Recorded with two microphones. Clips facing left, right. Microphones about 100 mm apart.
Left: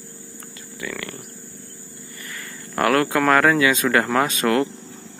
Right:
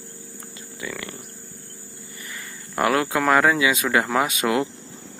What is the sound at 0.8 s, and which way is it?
Speech, 20° right (ahead or behind).